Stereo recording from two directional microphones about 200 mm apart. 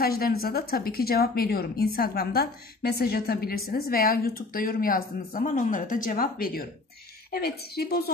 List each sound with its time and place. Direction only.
0.0 s a woman's voice: 50° left (ahead or behind)